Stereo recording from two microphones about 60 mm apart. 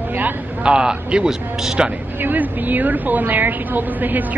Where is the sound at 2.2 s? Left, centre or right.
Right.